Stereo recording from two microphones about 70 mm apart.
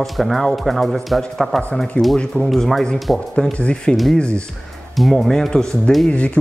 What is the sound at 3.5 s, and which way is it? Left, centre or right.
Speech, centre.